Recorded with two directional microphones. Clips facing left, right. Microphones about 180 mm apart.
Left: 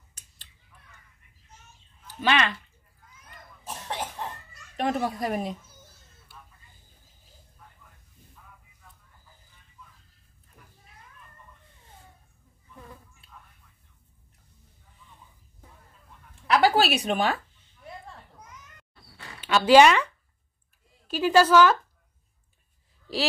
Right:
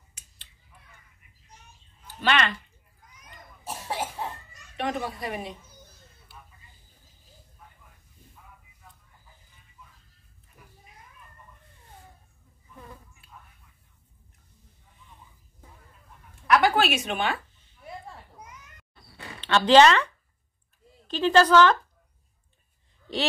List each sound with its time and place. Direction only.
2.2 s speech: 5° left (ahead or behind)
3.6 s cough: 10° right (ahead or behind)
4.7 s a woman's voice: 45° left (ahead or behind)
16.4 s a sound: 30° left (ahead or behind)
19.4 s speech: 10° left (ahead or behind)
21.1 s speech: 10° left (ahead or behind)